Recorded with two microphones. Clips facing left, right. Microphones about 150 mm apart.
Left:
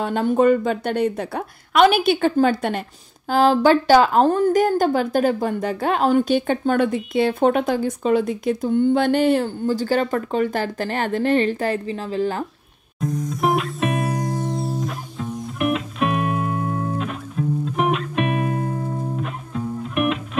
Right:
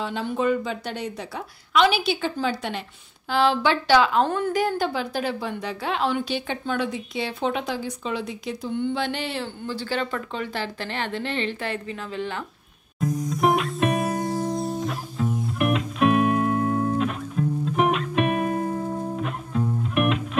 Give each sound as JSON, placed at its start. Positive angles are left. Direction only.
{"t": 0.0, "sound": "a woman's voice", "side_deg": 50}
{"t": 13.0, "sound": "music", "side_deg": 0}